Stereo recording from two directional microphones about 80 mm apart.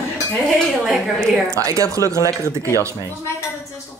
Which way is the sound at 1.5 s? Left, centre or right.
Right.